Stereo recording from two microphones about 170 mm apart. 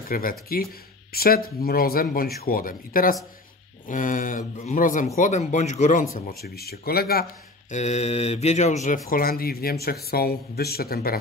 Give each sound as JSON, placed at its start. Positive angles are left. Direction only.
{"t": 0.1, "sound": "speech", "side_deg": 60}
{"t": 6.4, "sound": "speech", "side_deg": 65}
{"t": 7.7, "sound": "speech", "side_deg": 40}
{"t": 9.1, "sound": "speech", "side_deg": 60}